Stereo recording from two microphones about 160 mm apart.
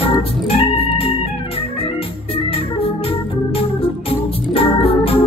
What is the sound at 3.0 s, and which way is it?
Organ, 35° left (ahead or behind).